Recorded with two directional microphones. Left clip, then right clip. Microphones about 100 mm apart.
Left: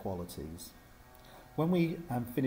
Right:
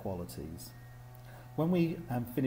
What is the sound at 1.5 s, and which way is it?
Speech, 35° left (ahead or behind).